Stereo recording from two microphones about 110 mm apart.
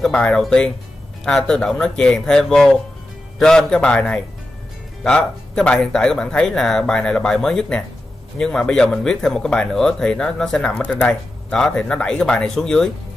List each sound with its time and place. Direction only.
0.0 s speech: 5° left (ahead or behind)